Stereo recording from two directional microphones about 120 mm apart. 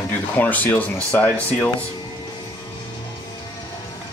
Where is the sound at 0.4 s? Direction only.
15° left (ahead or behind).